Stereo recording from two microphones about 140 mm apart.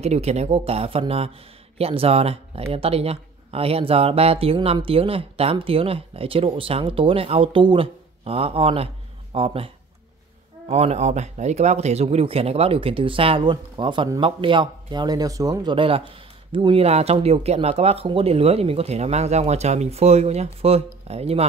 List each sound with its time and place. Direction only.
0.0 s speech: 50° right (ahead or behind)
10.7 s speech: 50° right (ahead or behind)